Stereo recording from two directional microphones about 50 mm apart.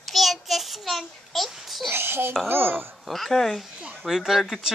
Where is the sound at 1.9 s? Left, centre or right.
Right.